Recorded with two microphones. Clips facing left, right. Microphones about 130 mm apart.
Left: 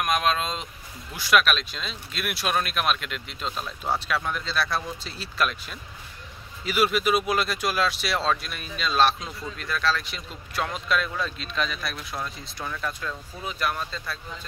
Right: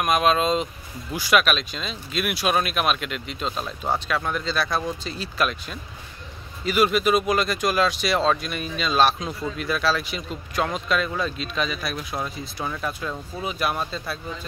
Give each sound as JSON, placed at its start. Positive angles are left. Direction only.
{"t": 0.0, "sound": "speech", "side_deg": -5}
{"t": 12.6, "sound": "speech", "side_deg": -20}